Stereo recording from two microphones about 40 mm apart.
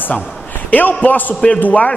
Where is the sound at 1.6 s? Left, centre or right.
Left.